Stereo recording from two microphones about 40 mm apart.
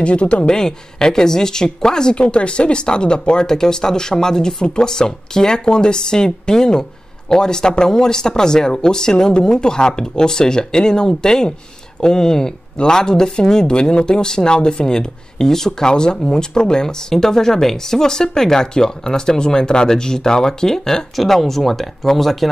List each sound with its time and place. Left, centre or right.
0.0 s speech: left; by 22.5 s centre